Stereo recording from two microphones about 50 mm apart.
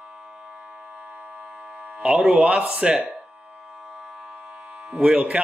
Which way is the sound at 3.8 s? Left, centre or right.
Centre.